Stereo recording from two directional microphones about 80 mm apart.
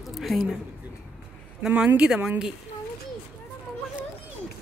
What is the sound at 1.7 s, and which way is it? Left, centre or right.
Speech, centre.